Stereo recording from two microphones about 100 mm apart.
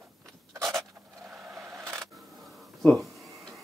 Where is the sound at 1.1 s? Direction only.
25° right (ahead or behind).